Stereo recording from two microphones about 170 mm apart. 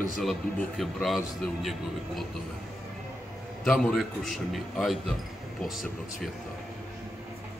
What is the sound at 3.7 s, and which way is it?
Speech, 5° left (ahead or behind).